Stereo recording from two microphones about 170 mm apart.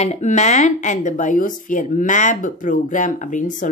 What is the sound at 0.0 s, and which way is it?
A woman's voice, 40° left (ahead or behind).